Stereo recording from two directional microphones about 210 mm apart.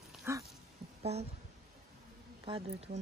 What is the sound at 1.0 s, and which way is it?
Speech, 30° right (ahead or behind).